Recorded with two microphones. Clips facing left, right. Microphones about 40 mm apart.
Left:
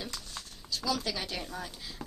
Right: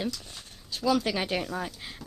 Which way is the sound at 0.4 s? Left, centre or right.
Right.